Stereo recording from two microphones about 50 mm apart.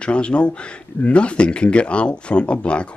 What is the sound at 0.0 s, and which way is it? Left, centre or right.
Speech, left.